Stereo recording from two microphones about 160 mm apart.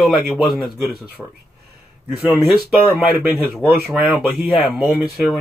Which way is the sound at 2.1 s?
10° right (ahead or behind).